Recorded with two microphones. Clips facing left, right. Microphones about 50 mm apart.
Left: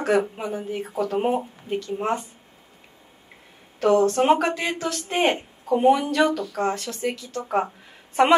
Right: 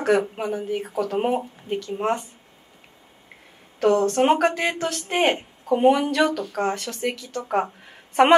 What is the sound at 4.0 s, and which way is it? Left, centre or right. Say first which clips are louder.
Speech: even; right.